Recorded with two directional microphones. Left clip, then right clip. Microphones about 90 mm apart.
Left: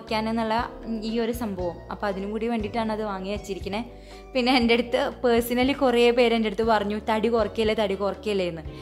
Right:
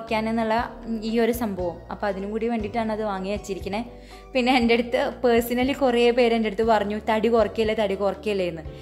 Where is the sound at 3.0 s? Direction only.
5° left (ahead or behind).